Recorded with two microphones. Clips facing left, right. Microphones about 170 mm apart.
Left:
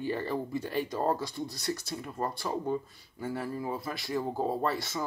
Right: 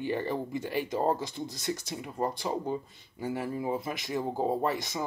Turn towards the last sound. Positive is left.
turn(degrees=-15)  # may be behind; listen again after turning